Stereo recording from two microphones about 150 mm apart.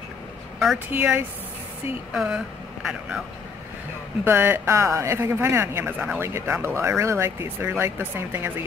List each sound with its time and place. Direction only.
0.6 s speech: 5° right (ahead or behind)
4.2 s speech: 15° right (ahead or behind)